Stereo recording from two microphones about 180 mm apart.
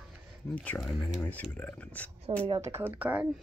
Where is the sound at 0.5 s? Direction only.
10° left (ahead or behind).